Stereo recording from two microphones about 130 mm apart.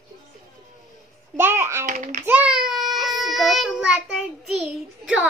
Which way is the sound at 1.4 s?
15° right (ahead or behind).